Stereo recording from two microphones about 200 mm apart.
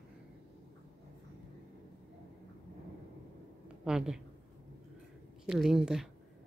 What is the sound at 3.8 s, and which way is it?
Speech, 5° right (ahead or behind).